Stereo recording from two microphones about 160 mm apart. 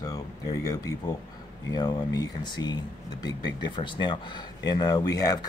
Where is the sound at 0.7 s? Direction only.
20° left (ahead or behind).